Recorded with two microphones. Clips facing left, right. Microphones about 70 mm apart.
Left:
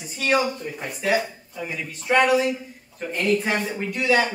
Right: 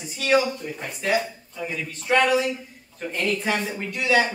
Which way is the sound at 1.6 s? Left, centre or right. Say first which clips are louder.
Even; centre.